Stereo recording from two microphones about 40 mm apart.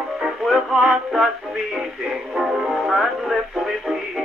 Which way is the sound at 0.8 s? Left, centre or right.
Centre.